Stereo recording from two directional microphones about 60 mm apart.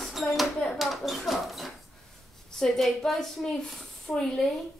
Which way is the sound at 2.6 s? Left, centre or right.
Centre.